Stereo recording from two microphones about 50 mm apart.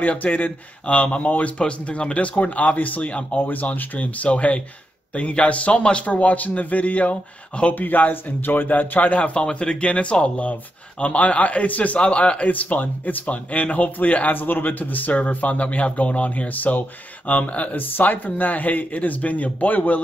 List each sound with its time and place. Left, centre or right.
0.0 s speech: left
3.4 s a man's voice: left
7.7 s a man's voice: left
17.7 s a man's voice: left